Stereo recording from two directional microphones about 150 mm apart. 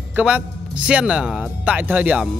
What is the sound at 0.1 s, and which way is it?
Speech, 10° right (ahead or behind).